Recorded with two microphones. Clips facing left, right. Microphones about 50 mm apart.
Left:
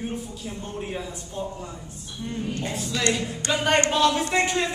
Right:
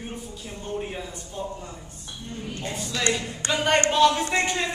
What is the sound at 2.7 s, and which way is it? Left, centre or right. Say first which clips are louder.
Speech: even; centre.